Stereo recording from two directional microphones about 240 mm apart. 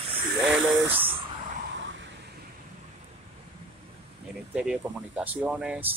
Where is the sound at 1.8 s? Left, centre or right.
Right.